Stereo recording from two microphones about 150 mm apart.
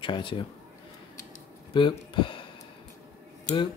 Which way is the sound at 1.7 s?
30° left (ahead or behind).